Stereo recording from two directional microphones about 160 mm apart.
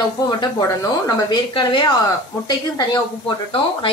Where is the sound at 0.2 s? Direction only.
25° left (ahead or behind).